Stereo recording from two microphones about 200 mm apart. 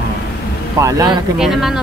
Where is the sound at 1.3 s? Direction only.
Centre (ahead or behind).